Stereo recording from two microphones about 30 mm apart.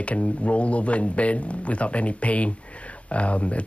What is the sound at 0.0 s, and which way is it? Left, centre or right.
Speech, left.